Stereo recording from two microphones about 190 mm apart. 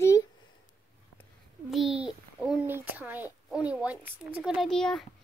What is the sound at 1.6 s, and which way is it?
Speech, centre (ahead or behind).